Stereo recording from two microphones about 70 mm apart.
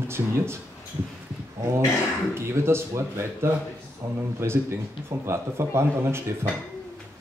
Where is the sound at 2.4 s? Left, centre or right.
Right.